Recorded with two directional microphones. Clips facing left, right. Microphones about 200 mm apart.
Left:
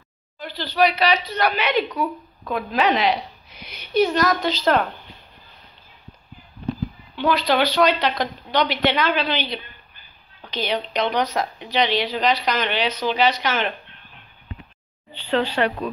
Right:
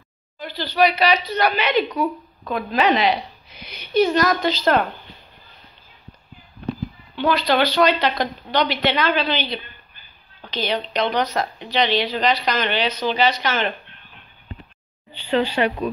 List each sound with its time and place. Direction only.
0.4 s speech: centre (ahead or behind)
7.2 s speech: centre (ahead or behind)
10.5 s speech: 5° left (ahead or behind)
15.1 s speech: 5° right (ahead or behind)